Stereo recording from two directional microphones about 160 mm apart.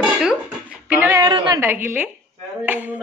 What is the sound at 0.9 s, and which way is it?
Speech, 15° right (ahead or behind).